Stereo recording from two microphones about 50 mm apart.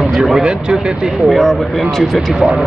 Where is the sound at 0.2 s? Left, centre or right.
Centre.